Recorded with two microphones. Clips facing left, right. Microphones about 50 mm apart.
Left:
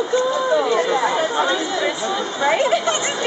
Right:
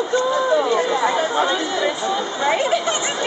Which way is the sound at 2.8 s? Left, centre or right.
Centre.